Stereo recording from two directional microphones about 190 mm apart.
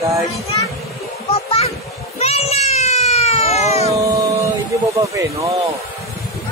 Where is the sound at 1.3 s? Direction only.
30° left (ahead or behind).